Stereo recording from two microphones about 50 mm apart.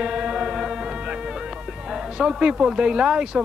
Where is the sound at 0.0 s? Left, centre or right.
Centre.